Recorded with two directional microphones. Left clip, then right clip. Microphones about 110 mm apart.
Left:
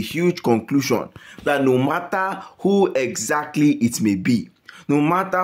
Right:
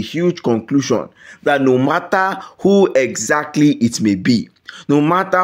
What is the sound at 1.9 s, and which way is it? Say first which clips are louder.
Speech: right 6 dB; 40° right (ahead or behind).